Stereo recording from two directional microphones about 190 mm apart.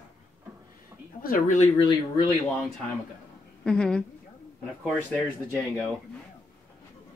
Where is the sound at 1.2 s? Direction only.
45° left (ahead or behind).